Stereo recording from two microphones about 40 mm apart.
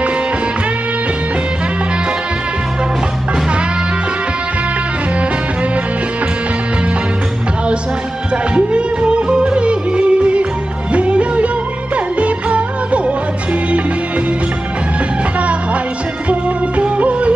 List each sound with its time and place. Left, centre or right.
8.5 s music: right
16.3 s music: right